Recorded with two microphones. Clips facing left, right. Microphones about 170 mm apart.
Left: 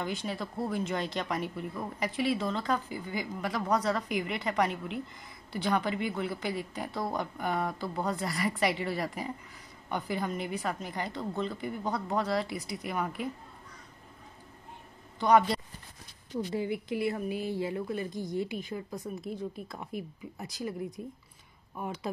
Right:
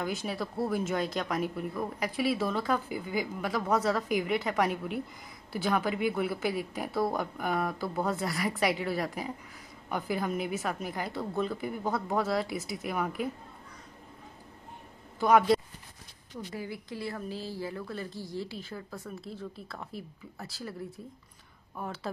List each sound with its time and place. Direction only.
0.0 s speech: centre (ahead or behind)
15.1 s speech: centre (ahead or behind)
16.5 s speech: 20° left (ahead or behind)